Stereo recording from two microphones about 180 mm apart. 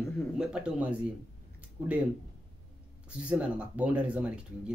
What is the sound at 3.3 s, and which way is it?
Speech, 5° right (ahead or behind).